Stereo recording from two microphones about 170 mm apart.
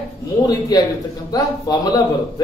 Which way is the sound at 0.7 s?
20° left (ahead or behind).